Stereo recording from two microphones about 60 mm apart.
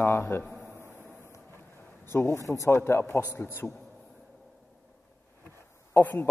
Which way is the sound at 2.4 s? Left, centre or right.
Left.